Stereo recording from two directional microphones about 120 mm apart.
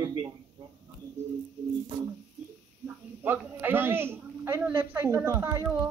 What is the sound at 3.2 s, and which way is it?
A man's voice, 15° right (ahead or behind).